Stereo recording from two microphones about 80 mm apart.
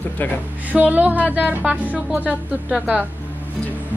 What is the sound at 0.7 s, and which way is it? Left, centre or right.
Speech, centre.